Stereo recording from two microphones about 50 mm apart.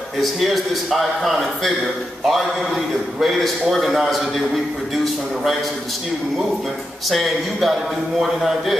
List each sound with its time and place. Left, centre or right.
0.2 s a man's voice: centre
7.1 s a man's voice: centre